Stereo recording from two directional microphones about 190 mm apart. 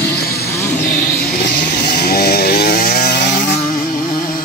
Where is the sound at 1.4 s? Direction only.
60° left (ahead or behind).